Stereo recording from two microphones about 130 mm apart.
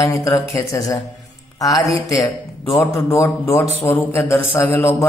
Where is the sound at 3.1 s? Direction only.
20° left (ahead or behind).